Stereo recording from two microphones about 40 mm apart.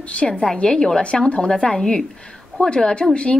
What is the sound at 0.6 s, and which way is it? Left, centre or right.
Speech, centre.